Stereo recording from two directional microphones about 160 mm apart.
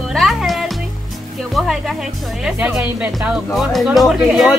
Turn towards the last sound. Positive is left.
turn(degrees=0)  # may be behind; listen again after turning